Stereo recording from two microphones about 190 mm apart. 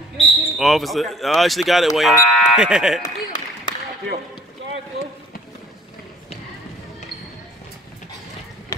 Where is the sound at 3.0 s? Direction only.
20° left (ahead or behind).